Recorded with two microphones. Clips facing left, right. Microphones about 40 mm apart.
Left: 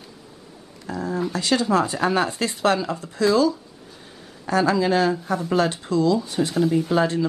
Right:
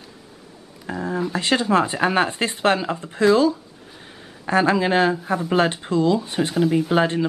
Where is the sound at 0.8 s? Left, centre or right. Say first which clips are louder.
Right 1 dB; right.